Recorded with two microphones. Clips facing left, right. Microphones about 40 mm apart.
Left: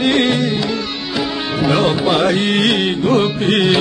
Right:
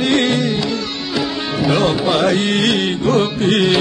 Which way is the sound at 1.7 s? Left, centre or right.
Centre.